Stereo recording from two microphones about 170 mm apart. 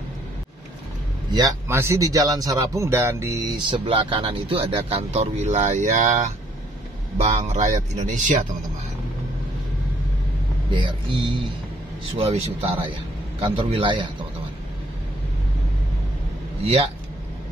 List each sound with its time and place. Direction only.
1.3 s speech: 20° right (ahead or behind)
3.7 s speech: 30° right (ahead or behind); by 8.4 s 45° right (ahead or behind)
10.7 s speech: 30° right (ahead or behind)
16.6 s speech: 35° right (ahead or behind)